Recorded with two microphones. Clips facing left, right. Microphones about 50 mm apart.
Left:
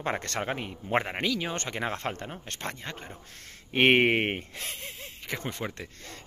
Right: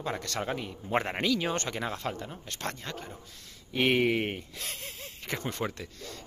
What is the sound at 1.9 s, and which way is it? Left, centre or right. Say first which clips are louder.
Speech: left 2 dB; left.